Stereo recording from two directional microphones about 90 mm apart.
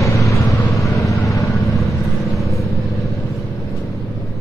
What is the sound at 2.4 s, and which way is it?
Vehicle, 35° left (ahead or behind).